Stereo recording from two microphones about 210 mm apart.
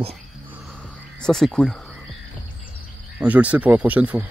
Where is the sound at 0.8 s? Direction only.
5° left (ahead or behind).